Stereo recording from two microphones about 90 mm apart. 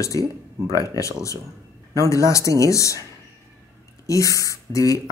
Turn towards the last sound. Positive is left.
turn(degrees=40)  # may be behind; listen again after turning